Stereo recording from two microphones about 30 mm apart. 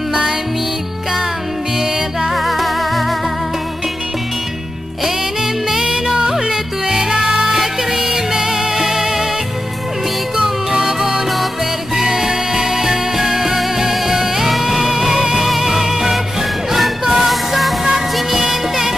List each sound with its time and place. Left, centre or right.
2.3 s music: centre
5.0 s music: centre
10.3 s music: centre
15.4 s music: centre
17.3 s music: centre
18.5 s music of bollywood: centre